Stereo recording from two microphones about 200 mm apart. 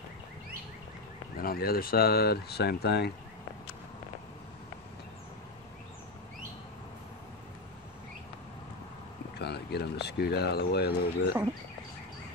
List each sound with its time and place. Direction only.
1.3 s speech: 45° left (ahead or behind)
9.4 s speech: 55° left (ahead or behind)